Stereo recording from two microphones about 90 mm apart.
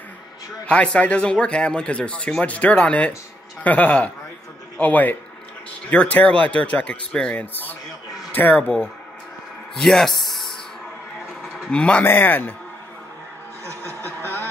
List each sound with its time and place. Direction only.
0.7 s speech: 15° left (ahead or behind)
9.8 s speech: 5° left (ahead or behind)
11.7 s speech: 10° left (ahead or behind)
12.0 s speech: 20° left (ahead or behind)
13.7 s chuckle: 25° left (ahead or behind)